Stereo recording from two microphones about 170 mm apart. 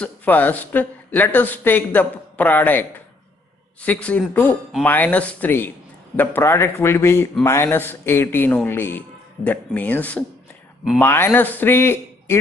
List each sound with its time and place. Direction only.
0.0 s speech: 10° left (ahead or behind)